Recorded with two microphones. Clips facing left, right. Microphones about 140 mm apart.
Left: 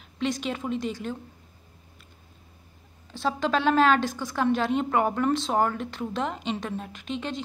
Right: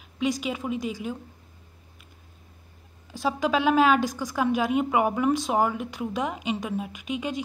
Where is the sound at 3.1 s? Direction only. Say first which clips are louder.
Right 1 dB; 10° right (ahead or behind).